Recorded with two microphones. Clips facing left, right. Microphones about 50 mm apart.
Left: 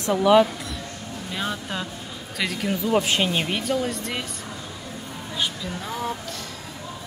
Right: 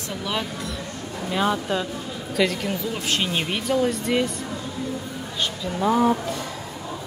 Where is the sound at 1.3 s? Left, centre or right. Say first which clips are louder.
Right 7 dB; centre.